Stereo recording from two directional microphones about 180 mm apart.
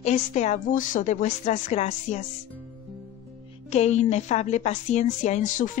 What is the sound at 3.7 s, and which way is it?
A woman's voice, 40° left (ahead or behind).